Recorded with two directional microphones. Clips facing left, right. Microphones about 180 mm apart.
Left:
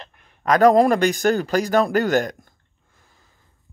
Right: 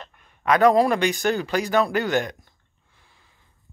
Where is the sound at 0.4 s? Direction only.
40° left (ahead or behind).